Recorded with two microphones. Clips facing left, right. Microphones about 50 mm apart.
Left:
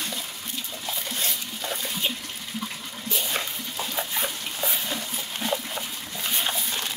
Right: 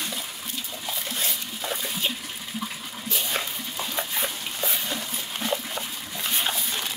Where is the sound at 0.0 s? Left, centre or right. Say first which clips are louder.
Even; centre.